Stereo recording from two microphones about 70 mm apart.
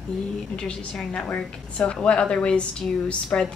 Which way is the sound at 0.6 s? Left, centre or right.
Centre.